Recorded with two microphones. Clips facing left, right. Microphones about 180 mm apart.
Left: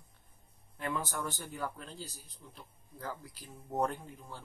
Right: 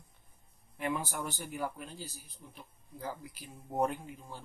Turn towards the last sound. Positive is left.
turn(degrees=-15)  # may be behind; listen again after turning